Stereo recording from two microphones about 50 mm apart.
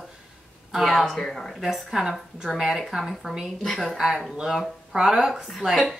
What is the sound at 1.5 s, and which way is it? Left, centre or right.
A woman's voice, centre.